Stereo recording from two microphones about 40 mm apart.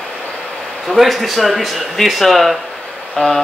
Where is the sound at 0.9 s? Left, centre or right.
Centre.